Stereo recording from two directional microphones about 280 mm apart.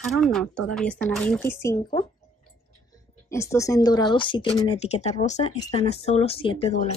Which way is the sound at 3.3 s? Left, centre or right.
Centre.